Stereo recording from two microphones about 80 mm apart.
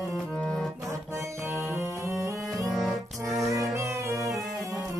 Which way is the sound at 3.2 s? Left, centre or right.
Right.